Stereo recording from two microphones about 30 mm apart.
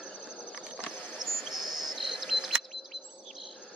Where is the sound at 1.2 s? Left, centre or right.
Centre.